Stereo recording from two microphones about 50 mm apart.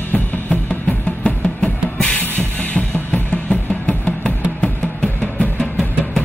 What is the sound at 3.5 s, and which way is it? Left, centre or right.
Music, centre.